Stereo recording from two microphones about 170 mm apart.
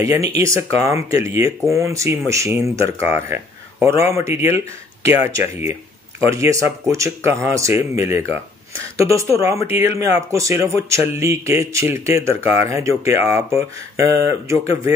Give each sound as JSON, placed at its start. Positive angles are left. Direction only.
{"t": 0.4, "sound": "speech", "side_deg": -15}